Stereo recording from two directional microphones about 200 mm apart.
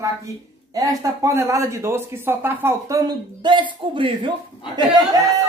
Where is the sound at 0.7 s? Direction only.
15° right (ahead or behind).